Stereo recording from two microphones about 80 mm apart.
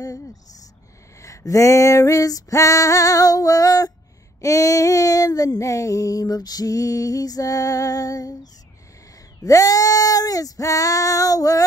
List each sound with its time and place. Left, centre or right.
1.2 s female singing: left
9.4 s female singing: left